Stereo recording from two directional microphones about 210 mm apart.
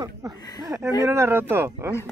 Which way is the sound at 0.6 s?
15° right (ahead or behind).